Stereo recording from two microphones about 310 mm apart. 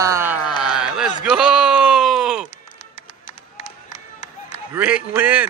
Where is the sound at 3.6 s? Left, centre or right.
Left.